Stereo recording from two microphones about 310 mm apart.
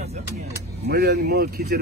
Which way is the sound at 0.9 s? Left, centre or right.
Right.